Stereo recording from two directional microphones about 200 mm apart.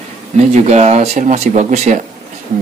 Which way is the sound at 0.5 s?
35° right (ahead or behind).